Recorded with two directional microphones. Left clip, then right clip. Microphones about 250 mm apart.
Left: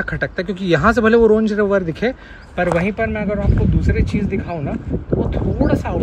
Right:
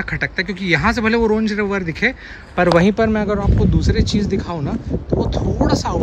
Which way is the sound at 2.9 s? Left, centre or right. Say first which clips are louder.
Right 3 dB; right.